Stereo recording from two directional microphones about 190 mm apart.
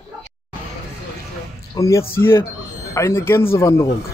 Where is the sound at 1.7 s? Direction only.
15° left (ahead or behind).